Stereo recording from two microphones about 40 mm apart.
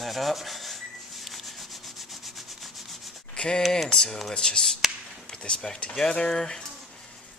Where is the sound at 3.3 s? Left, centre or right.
Left.